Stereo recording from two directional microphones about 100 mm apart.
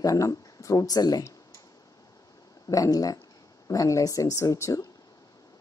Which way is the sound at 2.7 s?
35° left (ahead or behind).